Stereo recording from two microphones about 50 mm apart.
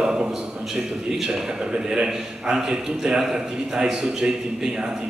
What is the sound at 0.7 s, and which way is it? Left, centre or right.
A man's voice, centre.